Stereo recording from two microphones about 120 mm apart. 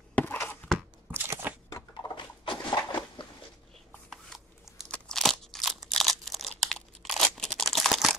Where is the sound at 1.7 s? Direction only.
35° left (ahead or behind).